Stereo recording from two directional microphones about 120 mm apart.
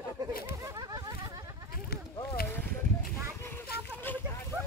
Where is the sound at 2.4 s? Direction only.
20° left (ahead or behind).